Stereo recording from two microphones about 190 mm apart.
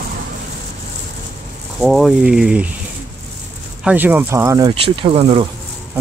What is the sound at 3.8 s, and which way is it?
Speech, 5° right (ahead or behind).